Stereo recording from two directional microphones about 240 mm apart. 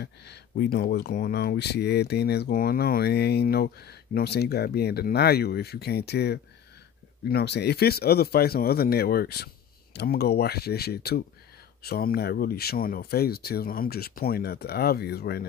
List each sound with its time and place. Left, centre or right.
0.0 s speech: left